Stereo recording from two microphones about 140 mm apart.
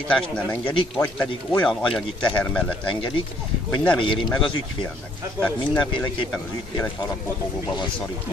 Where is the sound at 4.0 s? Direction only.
35° left (ahead or behind).